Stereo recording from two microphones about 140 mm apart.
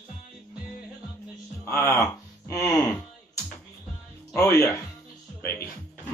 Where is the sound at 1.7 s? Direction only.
15° left (ahead or behind).